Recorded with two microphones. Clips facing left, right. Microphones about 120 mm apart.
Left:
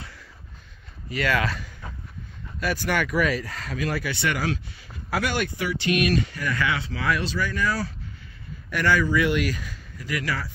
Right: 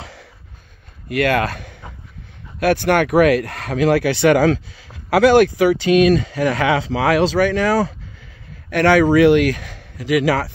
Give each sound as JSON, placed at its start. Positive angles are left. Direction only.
{"t": 0.0, "sound": "a sound", "side_deg": -80}
{"t": 1.0, "sound": "speech", "side_deg": -55}
{"t": 8.6, "sound": "speech", "side_deg": -70}